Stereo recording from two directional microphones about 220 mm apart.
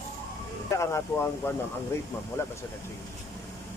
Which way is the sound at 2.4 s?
10° left (ahead or behind).